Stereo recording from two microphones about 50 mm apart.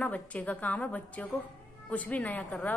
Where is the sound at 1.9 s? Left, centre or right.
Left.